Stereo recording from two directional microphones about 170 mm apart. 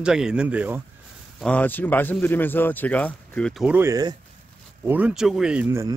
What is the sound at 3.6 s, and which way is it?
Speech, 10° right (ahead or behind).